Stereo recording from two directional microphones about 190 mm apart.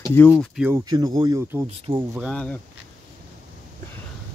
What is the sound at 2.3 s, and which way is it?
Speech, 5° left (ahead or behind).